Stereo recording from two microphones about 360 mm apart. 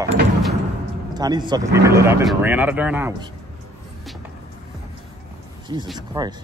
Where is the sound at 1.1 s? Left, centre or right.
Centre.